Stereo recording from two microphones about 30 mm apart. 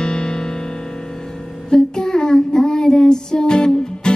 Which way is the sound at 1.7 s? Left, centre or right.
Left.